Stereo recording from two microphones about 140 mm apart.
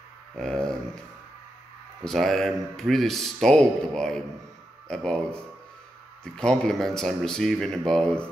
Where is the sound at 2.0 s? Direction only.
Centre (ahead or behind).